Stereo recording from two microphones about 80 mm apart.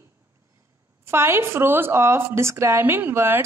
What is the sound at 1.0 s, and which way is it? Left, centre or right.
A woman's voice, right.